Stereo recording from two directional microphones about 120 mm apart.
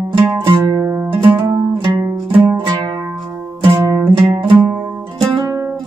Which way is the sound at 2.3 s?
20° right (ahead or behind).